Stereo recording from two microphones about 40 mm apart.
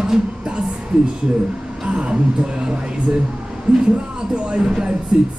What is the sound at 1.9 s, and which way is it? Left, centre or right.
Speech, right.